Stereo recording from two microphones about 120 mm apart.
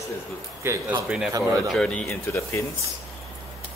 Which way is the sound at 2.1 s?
20° left (ahead or behind).